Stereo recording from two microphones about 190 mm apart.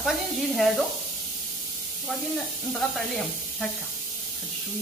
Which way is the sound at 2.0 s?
Centre (ahead or behind).